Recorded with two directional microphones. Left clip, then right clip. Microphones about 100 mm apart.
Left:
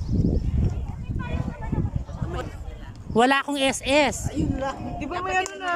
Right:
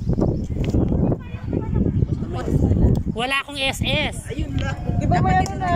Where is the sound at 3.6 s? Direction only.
75° left (ahead or behind).